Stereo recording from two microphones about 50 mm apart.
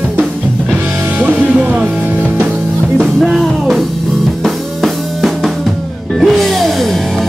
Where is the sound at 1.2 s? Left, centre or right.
Right.